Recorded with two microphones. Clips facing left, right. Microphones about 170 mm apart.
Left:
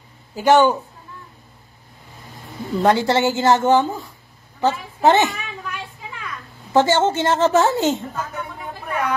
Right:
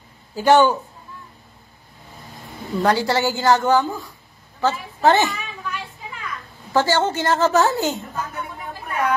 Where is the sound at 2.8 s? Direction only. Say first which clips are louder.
Left 2 dB; 20° left (ahead or behind).